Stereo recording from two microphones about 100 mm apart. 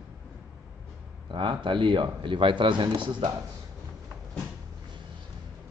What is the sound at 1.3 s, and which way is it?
Speech, 55° right (ahead or behind).